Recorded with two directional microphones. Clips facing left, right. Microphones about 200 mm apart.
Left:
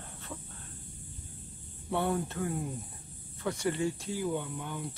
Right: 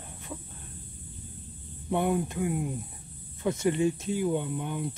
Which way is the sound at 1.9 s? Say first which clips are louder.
Right 4 dB; 15° right (ahead or behind).